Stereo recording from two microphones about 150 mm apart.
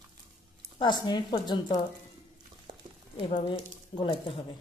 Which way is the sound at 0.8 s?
30° left (ahead or behind).